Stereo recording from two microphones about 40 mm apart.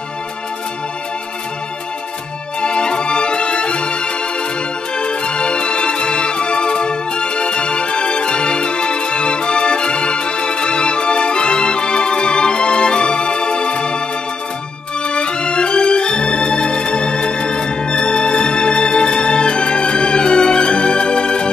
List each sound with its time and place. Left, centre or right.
2.6 s music: left
15.0 s music: left